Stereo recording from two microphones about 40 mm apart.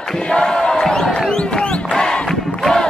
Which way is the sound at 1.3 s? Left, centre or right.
Left.